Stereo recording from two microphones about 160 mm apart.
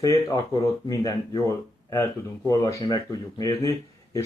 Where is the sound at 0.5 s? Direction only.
20° left (ahead or behind).